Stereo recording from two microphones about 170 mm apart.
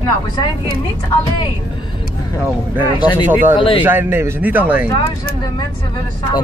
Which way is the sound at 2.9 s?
25° left (ahead or behind).